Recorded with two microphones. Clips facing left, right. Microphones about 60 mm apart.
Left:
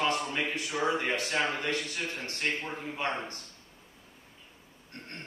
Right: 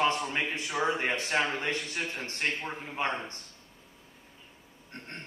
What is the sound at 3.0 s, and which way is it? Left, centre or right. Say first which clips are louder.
Speech: right 2 dB; right.